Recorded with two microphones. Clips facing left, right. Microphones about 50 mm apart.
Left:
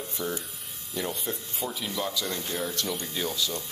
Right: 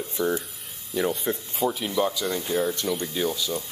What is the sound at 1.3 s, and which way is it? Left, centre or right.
Speech, right.